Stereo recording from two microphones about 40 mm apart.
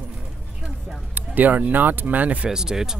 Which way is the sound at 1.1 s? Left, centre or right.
Right.